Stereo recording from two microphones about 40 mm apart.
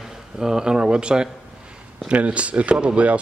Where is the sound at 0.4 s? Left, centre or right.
Centre.